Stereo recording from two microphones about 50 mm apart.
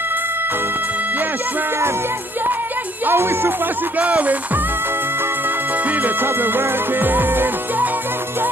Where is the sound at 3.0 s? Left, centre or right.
Right.